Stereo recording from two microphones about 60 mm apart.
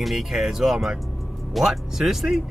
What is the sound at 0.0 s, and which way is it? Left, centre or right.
Speech, centre.